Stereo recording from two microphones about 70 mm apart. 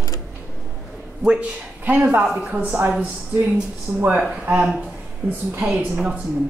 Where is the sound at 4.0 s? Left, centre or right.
Right.